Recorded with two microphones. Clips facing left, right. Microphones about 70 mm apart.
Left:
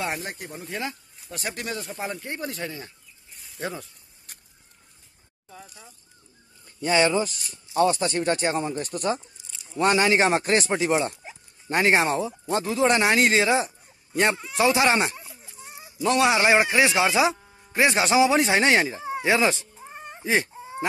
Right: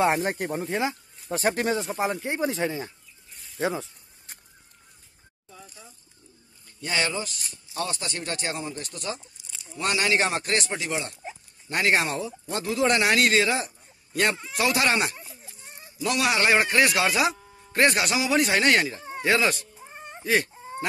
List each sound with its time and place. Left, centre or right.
0.0 s speech: right
0.4 s speech: right
0.7 s speech: right
1.3 s speech: right
1.9 s speech: centre
2.2 s speech: right
3.3 s bird: centre
7.7 s a man's voice: left
11.2 s dog: centre
11.7 s a man's voice: left
15.1 s baby cry: centre
16.0 s speech: left; by 17.9 s centre
17.9 s a man's voice: left; by 19.5 s centre
19.8 s a sound: centre